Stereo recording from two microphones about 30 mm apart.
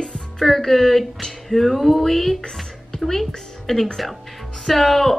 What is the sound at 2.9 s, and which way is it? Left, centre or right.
Music, left.